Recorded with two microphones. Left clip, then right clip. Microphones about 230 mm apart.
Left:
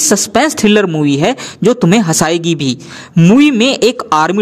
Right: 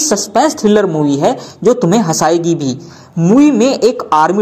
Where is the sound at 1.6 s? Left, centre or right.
Left.